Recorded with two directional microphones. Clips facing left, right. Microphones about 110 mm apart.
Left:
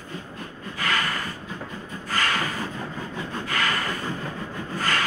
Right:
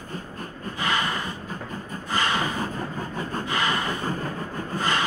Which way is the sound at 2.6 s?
45° right (ahead or behind).